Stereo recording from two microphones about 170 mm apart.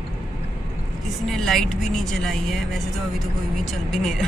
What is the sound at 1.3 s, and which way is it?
Speech, centre (ahead or behind).